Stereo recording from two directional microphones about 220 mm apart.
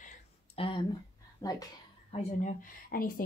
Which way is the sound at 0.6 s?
25° left (ahead or behind).